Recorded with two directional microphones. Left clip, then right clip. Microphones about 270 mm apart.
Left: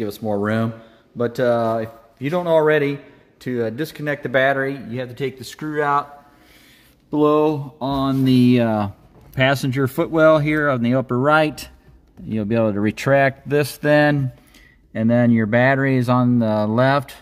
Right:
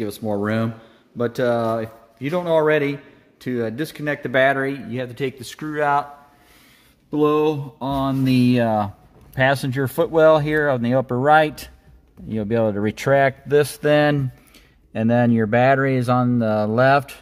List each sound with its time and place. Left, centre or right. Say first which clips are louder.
0.0 s a man's voice: left 2 dB; centre
7.1 s a man's voice: left 2 dB; centre